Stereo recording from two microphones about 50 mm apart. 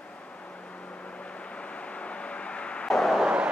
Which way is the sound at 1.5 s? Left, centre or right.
Left.